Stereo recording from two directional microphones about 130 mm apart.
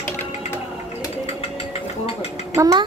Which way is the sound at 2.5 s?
30° right (ahead or behind).